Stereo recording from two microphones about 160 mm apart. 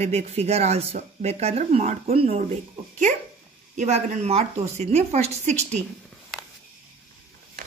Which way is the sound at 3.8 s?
45° right (ahead or behind).